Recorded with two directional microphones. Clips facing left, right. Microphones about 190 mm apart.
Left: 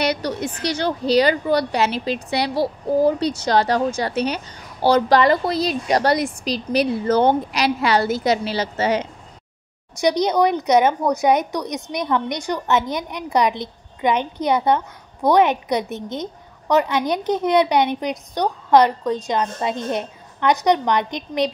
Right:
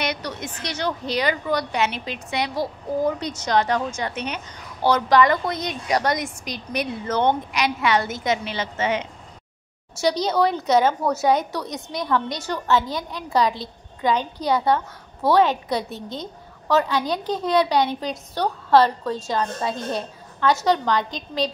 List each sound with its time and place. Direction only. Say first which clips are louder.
0.0 s a woman's voice: left 6 dB; 35° left (ahead or behind)
9.9 s a woman's voice: left 3 dB; 20° left (ahead or behind)